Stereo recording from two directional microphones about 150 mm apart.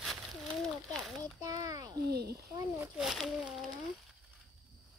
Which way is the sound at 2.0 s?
90° right.